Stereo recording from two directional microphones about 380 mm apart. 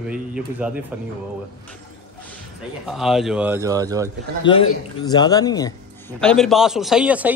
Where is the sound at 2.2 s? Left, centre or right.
Centre.